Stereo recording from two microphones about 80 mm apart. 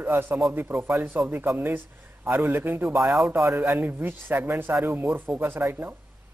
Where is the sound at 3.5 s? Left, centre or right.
Right.